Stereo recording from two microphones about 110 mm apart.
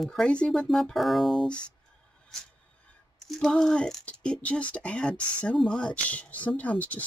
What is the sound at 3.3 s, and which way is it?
Speech, 5° left (ahead or behind).